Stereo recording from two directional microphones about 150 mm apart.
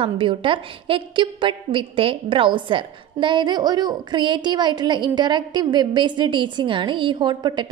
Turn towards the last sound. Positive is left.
turn(degrees=-30)  # may be behind; listen again after turning